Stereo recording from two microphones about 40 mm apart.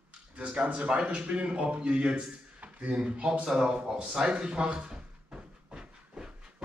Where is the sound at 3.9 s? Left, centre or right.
Centre.